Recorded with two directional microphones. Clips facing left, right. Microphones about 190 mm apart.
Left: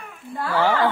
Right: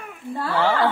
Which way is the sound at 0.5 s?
15° left (ahead or behind).